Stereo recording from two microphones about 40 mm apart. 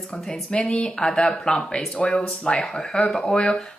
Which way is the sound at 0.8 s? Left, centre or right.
Centre.